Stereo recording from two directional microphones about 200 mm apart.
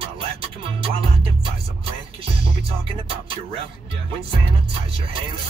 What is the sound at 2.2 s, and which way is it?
Music, 30° right (ahead or behind).